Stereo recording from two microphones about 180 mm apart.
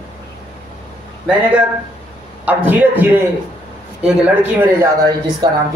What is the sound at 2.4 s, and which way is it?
A man's voice, 10° right (ahead or behind).